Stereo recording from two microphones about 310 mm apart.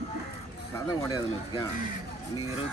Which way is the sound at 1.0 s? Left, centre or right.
Centre.